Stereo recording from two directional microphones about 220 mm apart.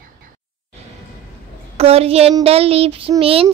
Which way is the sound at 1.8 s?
25° right (ahead or behind).